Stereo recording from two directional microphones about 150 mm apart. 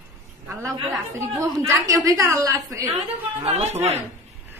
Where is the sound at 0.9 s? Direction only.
20° right (ahead or behind).